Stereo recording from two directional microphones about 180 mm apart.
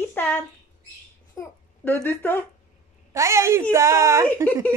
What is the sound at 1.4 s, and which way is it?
A child's voice, 20° left (ahead or behind).